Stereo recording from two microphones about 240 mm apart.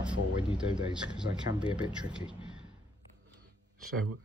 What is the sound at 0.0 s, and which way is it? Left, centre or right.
Speech, centre.